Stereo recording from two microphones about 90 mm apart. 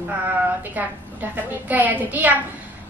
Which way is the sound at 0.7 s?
20° right (ahead or behind).